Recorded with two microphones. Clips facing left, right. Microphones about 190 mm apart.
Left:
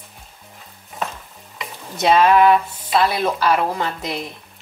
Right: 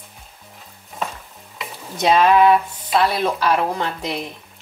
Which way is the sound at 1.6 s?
Centre (ahead or behind).